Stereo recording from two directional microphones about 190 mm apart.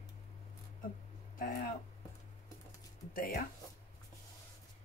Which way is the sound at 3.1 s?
45° left (ahead or behind).